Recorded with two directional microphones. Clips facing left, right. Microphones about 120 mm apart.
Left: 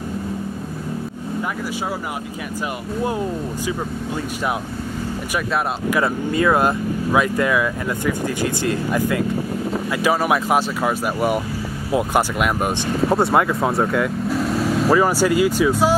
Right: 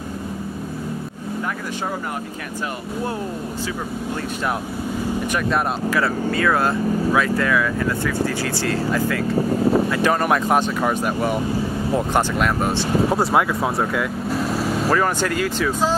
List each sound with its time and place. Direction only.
5.9 s speech: 20° left (ahead or behind)
13.1 s speech: centre (ahead or behind)